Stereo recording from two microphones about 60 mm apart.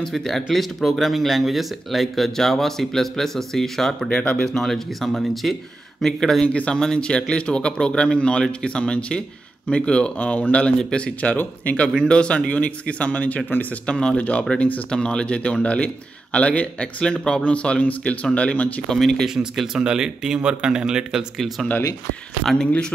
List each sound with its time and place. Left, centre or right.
0.0 s speech: centre
4.1 s a man's voice: centre
4.5 s speech: centre
6.4 s a man's voice: centre
18.9 s a man's voice: centre
19.2 s speech: centre
22.4 s speech: centre